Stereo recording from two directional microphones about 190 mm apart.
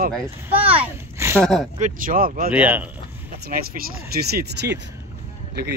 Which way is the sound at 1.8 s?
45° right (ahead or behind).